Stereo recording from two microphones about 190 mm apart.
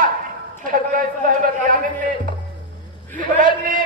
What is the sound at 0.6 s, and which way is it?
A woman's voice, 45° right (ahead or behind).